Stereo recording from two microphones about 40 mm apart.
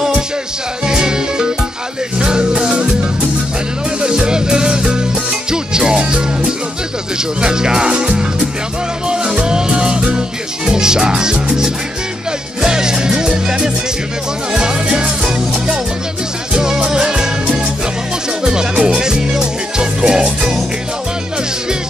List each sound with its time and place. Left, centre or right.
0.8 s music: centre